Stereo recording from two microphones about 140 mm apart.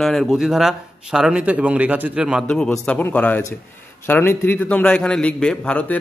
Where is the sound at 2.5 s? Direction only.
10° left (ahead or behind).